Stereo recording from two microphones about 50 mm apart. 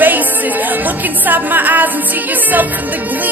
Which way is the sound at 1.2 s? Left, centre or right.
Right.